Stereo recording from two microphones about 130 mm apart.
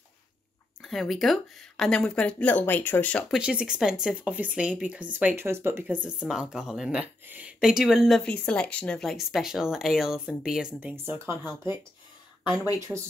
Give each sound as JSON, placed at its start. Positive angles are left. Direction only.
{"t": 0.8, "sound": "speech", "side_deg": 0}
{"t": 3.3, "sound": "speech", "side_deg": -5}
{"t": 6.0, "sound": "speech", "side_deg": -5}
{"t": 8.2, "sound": "speech", "side_deg": 10}